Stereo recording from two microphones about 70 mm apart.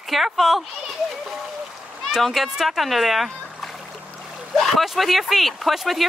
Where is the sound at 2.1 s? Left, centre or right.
Centre.